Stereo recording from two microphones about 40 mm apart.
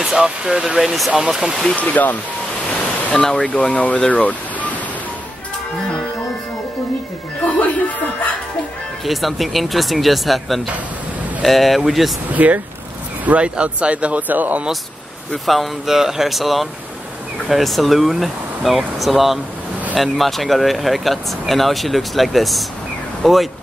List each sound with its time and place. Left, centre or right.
0.0 s speech: centre
1.8 s speech: left
3.1 s speech: centre; by 4.6 s left
9.0 s speech: centre
12.4 s speech: right
14.2 s speech: right
15.4 s speech: centre
15.9 s speech: centre